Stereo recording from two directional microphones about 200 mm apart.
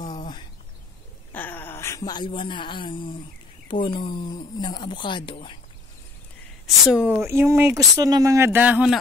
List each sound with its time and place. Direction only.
0.2 s a sound: 25° left (ahead or behind)
1.3 s speech: 10° left (ahead or behind); by 5.6 s 25° left (ahead or behind)
6.9 s speech: 5° right (ahead or behind)
7.2 s speech: 15° right (ahead or behind)